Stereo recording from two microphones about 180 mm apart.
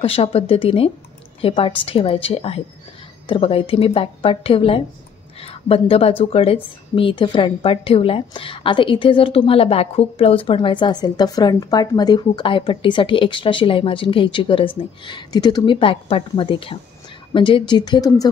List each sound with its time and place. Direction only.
0.0 s a woman's voice: 35° left (ahead or behind)